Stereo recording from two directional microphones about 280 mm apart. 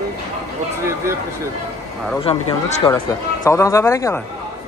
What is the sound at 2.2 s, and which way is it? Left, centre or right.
Speech, centre.